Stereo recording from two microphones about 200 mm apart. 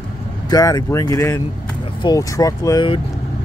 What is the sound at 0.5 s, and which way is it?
Speech, 20° left (ahead or behind).